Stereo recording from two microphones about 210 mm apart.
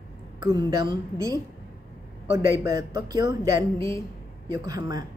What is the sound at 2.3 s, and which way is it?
Speech, 15° right (ahead or behind).